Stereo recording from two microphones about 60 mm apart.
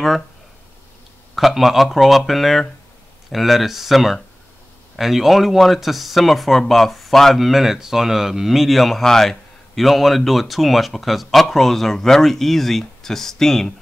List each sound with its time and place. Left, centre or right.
1.3 s speech: centre